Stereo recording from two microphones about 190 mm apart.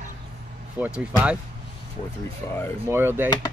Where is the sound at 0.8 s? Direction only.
5° right (ahead or behind).